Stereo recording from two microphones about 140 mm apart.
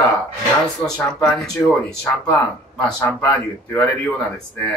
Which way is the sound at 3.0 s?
20° left (ahead or behind).